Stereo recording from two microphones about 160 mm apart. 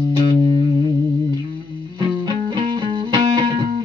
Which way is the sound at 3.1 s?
30° right (ahead or behind).